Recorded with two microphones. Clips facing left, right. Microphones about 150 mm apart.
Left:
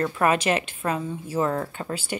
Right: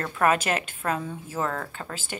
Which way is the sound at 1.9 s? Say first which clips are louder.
Left 6 dB; 45° right (ahead or behind).